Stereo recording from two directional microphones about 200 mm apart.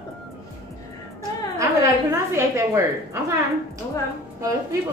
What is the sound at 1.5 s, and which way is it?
A woman's voice, 15° right (ahead or behind).